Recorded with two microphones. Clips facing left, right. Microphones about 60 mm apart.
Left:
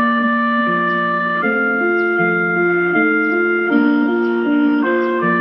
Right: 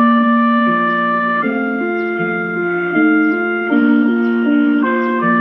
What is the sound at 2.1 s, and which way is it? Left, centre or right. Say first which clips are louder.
Music: left 3 dB; centre.